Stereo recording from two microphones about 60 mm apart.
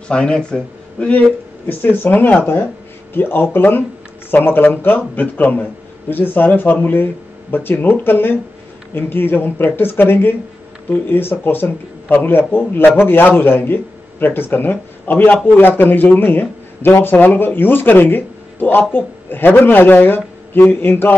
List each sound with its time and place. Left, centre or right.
0.1 s speech: centre
1.7 s speech: left